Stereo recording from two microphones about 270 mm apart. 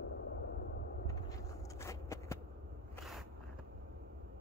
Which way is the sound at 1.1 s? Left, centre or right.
Centre.